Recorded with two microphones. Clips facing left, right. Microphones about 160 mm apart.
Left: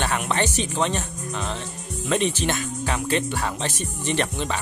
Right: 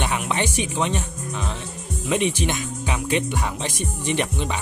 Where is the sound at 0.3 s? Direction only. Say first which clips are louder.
Even; 15° right (ahead or behind).